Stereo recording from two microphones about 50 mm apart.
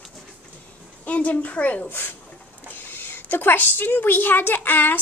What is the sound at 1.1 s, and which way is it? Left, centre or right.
Speech, left.